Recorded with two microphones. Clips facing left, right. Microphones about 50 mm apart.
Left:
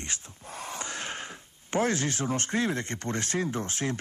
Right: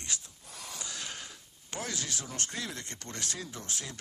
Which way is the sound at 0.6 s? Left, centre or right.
Left.